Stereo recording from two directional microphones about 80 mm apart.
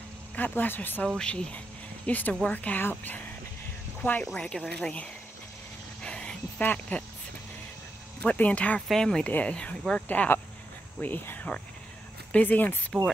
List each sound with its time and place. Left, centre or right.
0.4 s speech: left
1.0 s speech: centre
4.2 s speech: centre
6.0 s a sound: centre
6.6 s speech: centre
8.2 s speech: centre
8.8 s speech: centre; by 12.7 s left
12.9 s mechanisms: centre